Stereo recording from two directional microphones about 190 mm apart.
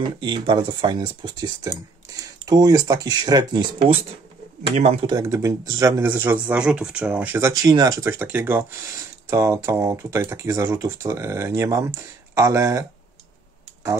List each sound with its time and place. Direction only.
0.2 s speech: 25° right (ahead or behind)
4.7 s speech: 35° right (ahead or behind)
5.1 s speech: 15° right (ahead or behind)